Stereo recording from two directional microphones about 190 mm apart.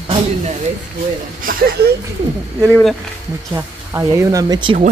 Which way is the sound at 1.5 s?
50° right (ahead or behind).